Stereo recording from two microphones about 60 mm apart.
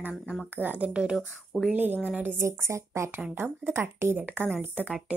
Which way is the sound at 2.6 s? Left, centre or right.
Right.